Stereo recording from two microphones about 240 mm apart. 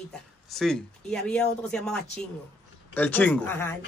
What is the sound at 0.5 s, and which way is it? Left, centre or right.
A woman's voice, centre.